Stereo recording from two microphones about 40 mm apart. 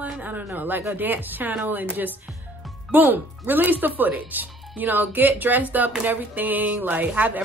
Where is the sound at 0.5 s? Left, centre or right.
Right.